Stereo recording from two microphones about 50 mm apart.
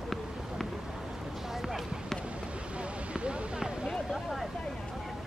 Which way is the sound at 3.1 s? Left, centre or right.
Right.